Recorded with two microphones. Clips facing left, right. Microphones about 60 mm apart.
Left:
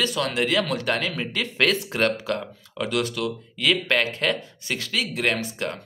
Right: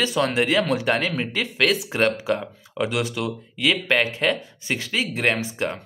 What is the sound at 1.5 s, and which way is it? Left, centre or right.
Speech, centre.